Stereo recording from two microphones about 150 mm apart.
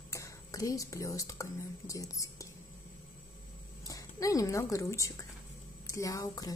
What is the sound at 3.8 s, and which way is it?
A woman's voice, 20° left (ahead or behind).